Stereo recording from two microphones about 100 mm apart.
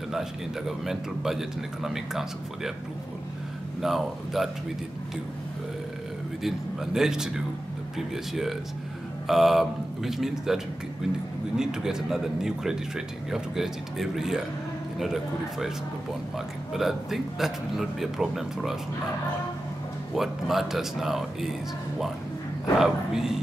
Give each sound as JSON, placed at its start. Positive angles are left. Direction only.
{"t": 0.1, "sound": "speech", "side_deg": -5}
{"t": 3.8, "sound": "speech", "side_deg": 0}
{"t": 6.4, "sound": "speech", "side_deg": -5}
{"t": 9.3, "sound": "speech", "side_deg": 0}
{"t": 16.7, "sound": "speech", "side_deg": -5}
{"t": 20.2, "sound": "speech", "side_deg": 0}
{"t": 22.8, "sound": "speech", "side_deg": -5}